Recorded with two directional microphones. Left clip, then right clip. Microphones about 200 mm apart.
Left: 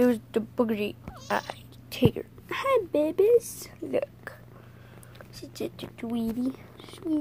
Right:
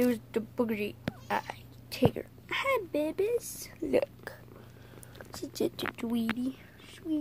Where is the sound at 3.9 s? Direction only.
20° right (ahead or behind).